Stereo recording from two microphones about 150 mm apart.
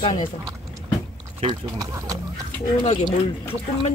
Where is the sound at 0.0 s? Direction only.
30° left (ahead or behind).